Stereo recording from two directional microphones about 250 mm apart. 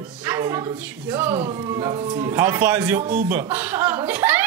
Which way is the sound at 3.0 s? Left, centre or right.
Right.